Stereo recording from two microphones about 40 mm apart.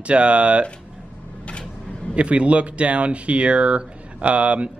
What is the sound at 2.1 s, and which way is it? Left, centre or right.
Speech, right.